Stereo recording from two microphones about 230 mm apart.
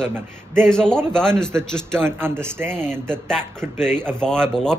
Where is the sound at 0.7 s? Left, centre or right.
Centre.